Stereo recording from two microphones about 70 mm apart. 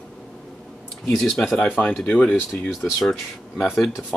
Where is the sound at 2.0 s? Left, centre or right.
Left.